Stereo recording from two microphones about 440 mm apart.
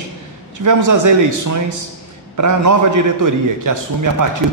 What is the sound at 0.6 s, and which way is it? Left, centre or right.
A man's voice, right.